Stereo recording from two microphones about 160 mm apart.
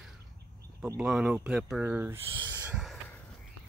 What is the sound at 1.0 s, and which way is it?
Speech, 5° right (ahead or behind).